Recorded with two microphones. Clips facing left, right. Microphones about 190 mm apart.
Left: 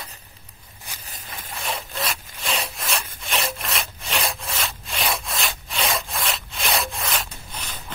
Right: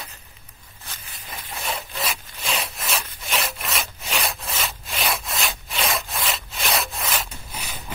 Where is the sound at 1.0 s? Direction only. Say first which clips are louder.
Even; 40° left (ahead or behind).